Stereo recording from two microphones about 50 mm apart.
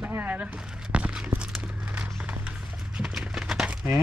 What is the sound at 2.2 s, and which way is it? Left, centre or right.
Music, right.